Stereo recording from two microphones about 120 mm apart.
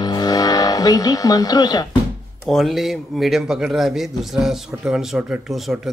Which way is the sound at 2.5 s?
Centre (ahead or behind).